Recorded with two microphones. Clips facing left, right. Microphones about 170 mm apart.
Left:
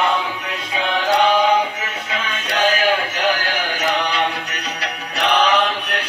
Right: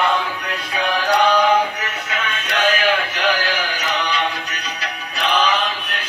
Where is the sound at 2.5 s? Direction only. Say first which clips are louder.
Left 1 dB; 40° left (ahead or behind).